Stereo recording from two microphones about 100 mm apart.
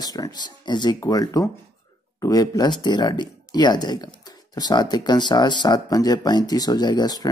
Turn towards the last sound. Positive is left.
turn(degrees=45)  # may be behind; listen again after turning